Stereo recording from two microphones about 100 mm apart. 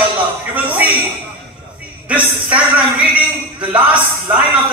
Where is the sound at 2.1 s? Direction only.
15° right (ahead or behind).